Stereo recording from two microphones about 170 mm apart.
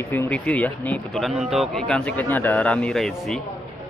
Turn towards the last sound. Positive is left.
turn(degrees=0)  # may be behind; listen again after turning